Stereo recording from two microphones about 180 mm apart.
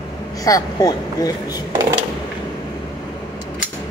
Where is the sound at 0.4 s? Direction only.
20° left (ahead or behind).